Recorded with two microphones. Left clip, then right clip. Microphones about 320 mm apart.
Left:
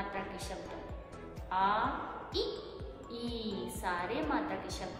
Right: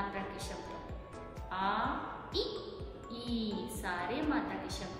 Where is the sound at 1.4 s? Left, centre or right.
Centre.